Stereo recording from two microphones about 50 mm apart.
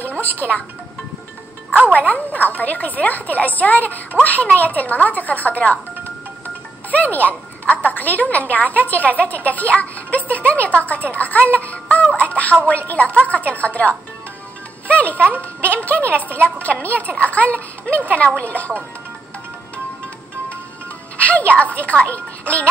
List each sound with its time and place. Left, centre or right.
0.2 s music: left
1.9 s a woman's voice: left
21.2 s a child's voice: left